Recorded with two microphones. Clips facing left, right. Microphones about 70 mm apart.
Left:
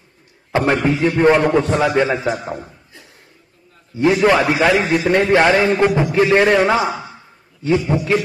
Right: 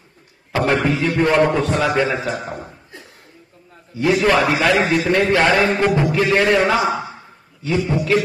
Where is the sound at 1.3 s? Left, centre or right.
Centre.